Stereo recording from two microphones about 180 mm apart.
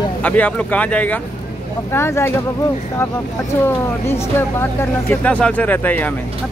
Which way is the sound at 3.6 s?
15° left (ahead or behind).